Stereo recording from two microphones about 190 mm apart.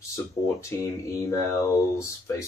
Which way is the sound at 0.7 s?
15° left (ahead or behind).